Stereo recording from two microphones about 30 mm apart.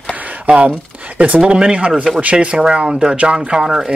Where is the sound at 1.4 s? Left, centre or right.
Right.